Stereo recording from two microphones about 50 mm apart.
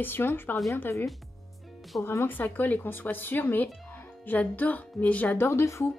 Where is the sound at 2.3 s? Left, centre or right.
Left.